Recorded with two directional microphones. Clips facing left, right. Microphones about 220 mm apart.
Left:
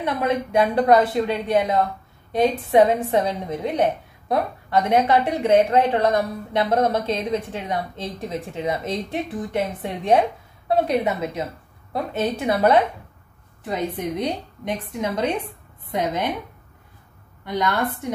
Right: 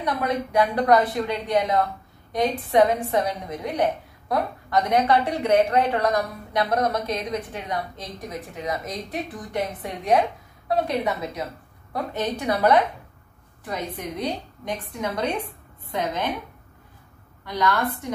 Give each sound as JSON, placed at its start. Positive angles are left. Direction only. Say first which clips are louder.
{"t": 0.0, "sound": "a woman's voice", "louder": "left 3 dB", "side_deg": 25}
{"t": 17.5, "sound": "a woman's voice", "louder": "left 1 dB", "side_deg": 20}